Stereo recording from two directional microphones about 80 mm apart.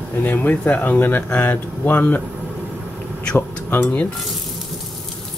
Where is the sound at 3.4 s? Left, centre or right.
Left.